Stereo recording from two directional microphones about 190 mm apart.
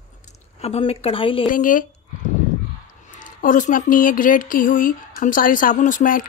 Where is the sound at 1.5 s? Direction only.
45° left (ahead or behind).